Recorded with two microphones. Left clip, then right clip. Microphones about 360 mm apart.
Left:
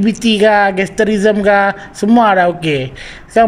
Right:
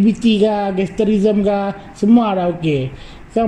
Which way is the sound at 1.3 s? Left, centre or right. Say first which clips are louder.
Left 6 dB; left.